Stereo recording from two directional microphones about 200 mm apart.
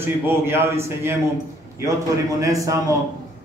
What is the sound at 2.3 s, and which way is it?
Speech, 15° right (ahead or behind).